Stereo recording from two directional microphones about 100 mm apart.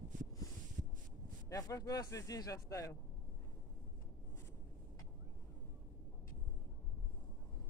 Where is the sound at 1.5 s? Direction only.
35° left (ahead or behind).